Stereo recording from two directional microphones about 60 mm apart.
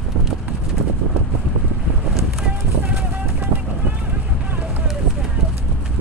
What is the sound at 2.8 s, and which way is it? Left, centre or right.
Clip-clop, right.